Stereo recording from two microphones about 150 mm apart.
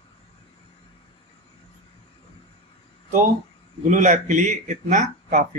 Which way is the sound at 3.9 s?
55° right (ahead or behind).